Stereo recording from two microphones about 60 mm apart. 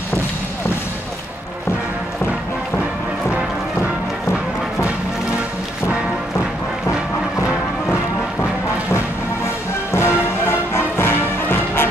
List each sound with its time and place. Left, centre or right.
9.9 s music: left